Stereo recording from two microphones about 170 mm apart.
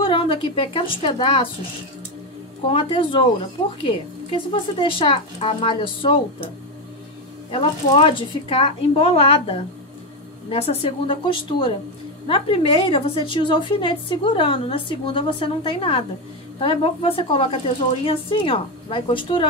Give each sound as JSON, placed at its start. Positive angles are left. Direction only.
{"t": 0.0, "sound": "a woman's voice", "side_deg": 30}
{"t": 2.7, "sound": "a woman's voice", "side_deg": 30}
{"t": 7.5, "sound": "a woman's voice", "side_deg": 30}